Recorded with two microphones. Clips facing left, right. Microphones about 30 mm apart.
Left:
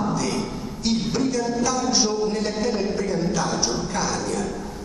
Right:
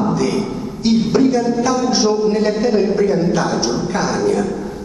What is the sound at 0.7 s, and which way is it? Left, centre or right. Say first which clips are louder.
Speech: right 8 dB; right.